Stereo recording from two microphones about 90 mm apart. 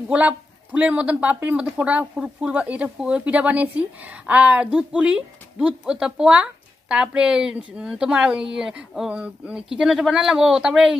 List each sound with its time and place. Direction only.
0.1 s speech: 15° right (ahead or behind)